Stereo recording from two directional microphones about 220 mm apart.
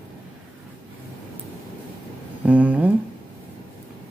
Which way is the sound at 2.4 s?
5° right (ahead or behind).